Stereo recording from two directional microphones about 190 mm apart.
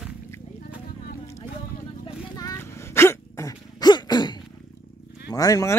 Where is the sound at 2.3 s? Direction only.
15° left (ahead or behind).